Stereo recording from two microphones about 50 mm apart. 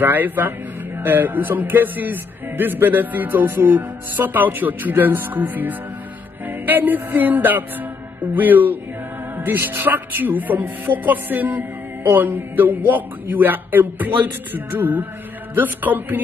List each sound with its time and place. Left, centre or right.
0.0 s speech: right
6.4 s music: right
8.2 s speech: right